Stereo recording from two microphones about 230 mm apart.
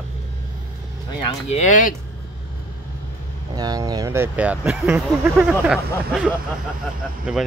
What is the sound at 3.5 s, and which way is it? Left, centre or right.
Speech, centre.